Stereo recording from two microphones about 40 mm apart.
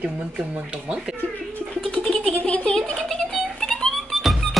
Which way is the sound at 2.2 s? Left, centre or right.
Left.